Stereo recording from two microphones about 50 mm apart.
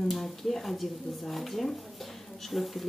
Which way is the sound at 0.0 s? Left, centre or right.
Centre.